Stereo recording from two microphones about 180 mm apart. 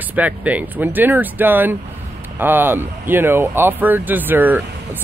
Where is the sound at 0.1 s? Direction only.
10° right (ahead or behind).